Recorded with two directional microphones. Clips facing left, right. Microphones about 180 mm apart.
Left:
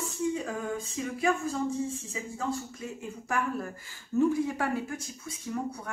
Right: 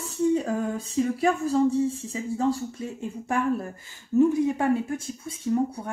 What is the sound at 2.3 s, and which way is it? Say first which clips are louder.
Speech: right 9 dB; 30° right (ahead or behind).